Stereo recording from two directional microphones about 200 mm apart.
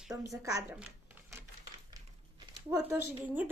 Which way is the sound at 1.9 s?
20° right (ahead or behind).